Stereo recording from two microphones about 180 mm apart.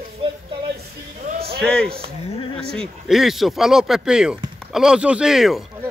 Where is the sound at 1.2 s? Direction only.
50° right (ahead or behind).